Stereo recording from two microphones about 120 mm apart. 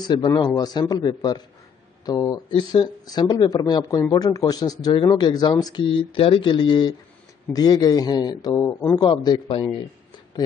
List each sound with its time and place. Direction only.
0.4 s speech: 35° left (ahead or behind)
9.5 s speech: 50° left (ahead or behind)